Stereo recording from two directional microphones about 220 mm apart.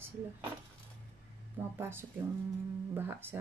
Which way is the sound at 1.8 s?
10° right (ahead or behind).